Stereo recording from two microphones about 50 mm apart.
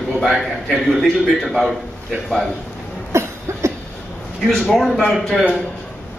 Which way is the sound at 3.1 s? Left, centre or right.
Right.